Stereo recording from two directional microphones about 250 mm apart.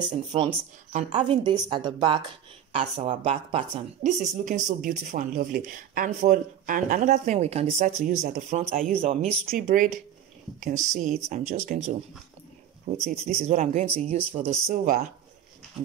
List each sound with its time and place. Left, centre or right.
0.3 s a woman's voice: right
9.5 s a woman's voice: right